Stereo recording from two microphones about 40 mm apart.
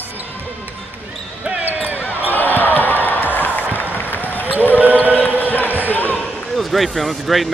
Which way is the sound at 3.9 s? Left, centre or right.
Left.